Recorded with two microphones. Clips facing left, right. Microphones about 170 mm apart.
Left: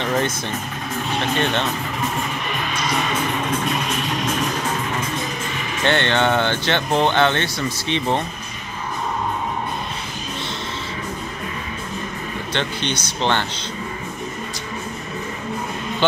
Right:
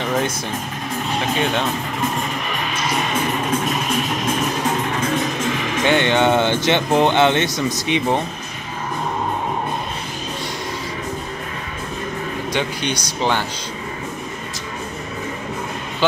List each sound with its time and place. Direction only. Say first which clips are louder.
0.0 s speech: even; 5° right (ahead or behind)
5.9 s speech: right 2 dB; 10° right (ahead or behind)
12.5 s speech: right 1 dB; 10° right (ahead or behind)
16.0 s speech: even; 5° right (ahead or behind)